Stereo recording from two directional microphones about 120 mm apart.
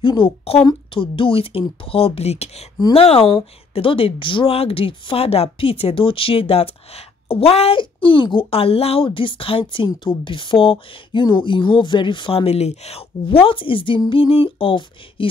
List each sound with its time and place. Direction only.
0.0 s speech: 45° left (ahead or behind)
3.3 s speech: 45° left (ahead or behind)
7.8 s speech: 45° left (ahead or behind)